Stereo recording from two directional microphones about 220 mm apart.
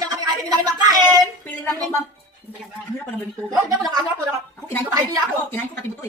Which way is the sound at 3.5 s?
15° right (ahead or behind).